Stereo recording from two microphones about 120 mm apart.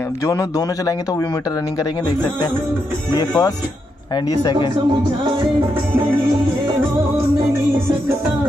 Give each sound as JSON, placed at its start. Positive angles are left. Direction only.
{"t": 0.3, "sound": "speech", "side_deg": 30}
{"t": 3.2, "sound": "speech", "side_deg": 30}